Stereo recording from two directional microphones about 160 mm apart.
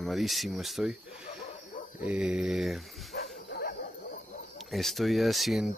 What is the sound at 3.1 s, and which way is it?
Dog, 80° left.